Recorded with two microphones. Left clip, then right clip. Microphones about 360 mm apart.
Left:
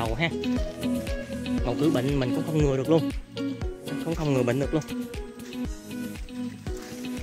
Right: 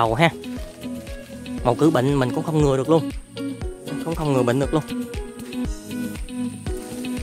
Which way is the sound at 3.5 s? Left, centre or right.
Right.